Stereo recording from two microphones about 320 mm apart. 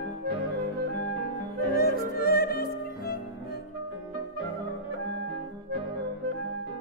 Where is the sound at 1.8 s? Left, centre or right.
Left.